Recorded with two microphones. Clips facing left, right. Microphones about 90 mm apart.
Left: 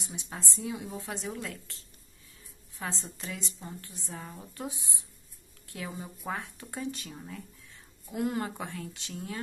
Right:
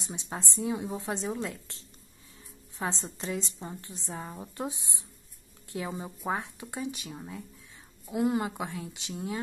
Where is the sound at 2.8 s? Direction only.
25° right (ahead or behind).